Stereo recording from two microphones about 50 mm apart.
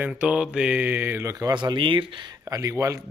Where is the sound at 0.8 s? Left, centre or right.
Right.